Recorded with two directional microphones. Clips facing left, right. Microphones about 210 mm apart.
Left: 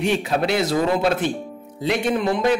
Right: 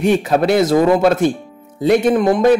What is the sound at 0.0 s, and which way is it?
A man's voice, 50° right (ahead or behind).